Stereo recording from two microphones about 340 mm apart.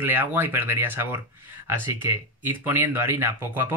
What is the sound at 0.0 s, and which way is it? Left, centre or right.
Speech, centre.